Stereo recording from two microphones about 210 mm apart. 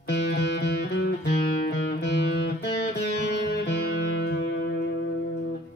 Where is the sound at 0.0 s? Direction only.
55° left (ahead or behind).